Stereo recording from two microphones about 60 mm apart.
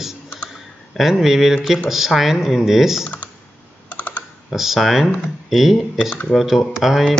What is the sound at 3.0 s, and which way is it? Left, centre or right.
Computer keyboard, left.